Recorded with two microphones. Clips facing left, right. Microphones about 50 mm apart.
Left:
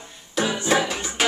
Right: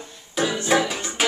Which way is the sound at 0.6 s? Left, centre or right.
Centre.